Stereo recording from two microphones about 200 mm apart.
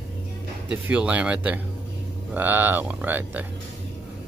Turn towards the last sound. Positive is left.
turn(degrees=-10)  # may be behind; listen again after turning